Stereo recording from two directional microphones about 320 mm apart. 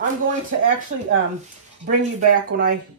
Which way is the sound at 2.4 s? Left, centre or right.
Right.